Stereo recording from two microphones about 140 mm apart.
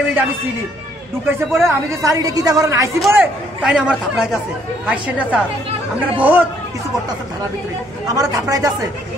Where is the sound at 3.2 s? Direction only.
5° right (ahead or behind).